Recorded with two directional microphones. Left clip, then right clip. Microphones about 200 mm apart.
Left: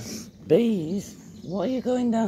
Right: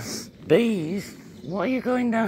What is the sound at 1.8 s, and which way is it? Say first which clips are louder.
Speech: even; 25° right (ahead or behind).